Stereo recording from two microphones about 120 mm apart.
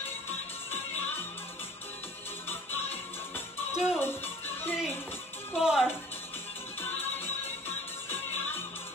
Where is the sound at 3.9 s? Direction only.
20° left (ahead or behind).